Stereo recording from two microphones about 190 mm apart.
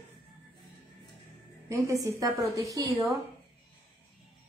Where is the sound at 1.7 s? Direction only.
15° right (ahead or behind).